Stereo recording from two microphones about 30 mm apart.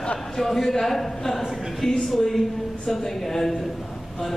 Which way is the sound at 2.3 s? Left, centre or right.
Centre.